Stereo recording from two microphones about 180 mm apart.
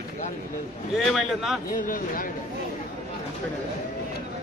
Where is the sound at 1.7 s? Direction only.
50° left (ahead or behind).